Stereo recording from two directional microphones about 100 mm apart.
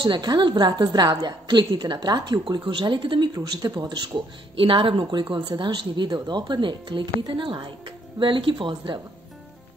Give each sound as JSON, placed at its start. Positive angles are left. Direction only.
{"t": 0.0, "sound": "a woman's voice", "side_deg": -45}